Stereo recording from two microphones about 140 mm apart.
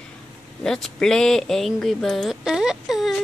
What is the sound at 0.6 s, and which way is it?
Speech, 5° left (ahead or behind).